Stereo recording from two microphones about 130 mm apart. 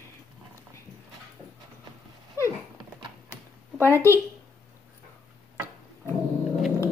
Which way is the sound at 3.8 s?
20° left (ahead or behind).